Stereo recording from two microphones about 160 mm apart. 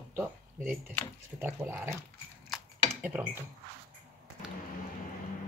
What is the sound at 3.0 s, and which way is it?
Speech, 5° right (ahead or behind).